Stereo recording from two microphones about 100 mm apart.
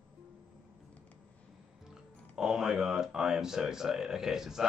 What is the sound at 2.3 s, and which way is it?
Speech, 5° right (ahead or behind).